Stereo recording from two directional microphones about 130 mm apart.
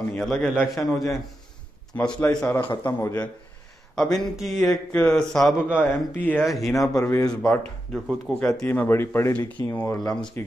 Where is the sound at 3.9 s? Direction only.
5° left (ahead or behind).